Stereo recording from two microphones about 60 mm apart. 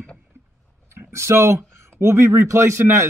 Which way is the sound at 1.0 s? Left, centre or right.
Right.